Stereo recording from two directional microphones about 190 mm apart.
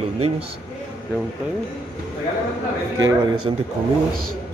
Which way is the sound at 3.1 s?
25° right (ahead or behind).